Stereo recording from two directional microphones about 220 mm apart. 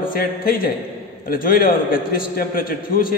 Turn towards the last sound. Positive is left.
turn(degrees=40)  # may be behind; listen again after turning